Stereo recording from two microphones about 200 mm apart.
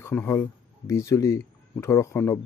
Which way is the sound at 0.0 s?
10° left (ahead or behind).